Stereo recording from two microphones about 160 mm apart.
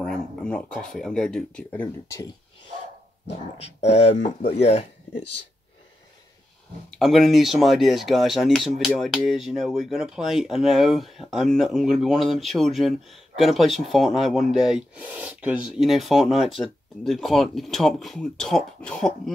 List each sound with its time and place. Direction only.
0.0 s a sound: 5° left (ahead or behind)
0.9 s speech: 5° left (ahead or behind)
3.9 s speech: 40° left (ahead or behind)
6.9 s speech: centre (ahead or behind)